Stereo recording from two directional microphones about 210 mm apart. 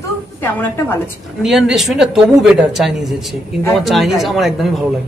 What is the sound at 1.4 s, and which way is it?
A man's voice, centre (ahead or behind).